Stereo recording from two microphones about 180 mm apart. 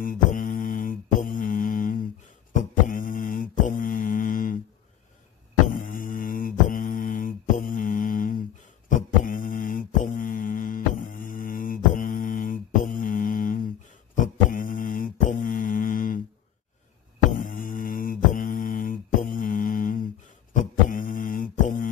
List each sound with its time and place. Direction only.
0.0 s mantra: 50° left (ahead or behind)
5.7 s mantra: 50° left (ahead or behind)
17.4 s mantra: 50° left (ahead or behind)
20.5 s beatboxing: 45° left (ahead or behind)